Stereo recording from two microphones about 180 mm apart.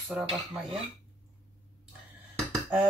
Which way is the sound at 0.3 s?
30° right (ahead or behind).